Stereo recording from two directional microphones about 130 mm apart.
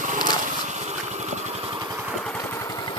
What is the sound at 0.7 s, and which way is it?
Vehicle, 60° right (ahead or behind).